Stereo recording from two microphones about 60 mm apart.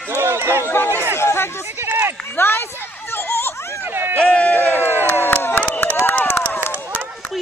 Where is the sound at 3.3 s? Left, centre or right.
Left.